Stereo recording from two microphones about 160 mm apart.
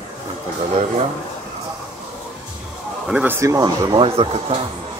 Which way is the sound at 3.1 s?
10° right (ahead or behind).